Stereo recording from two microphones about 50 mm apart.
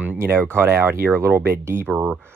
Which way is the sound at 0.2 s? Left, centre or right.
Right.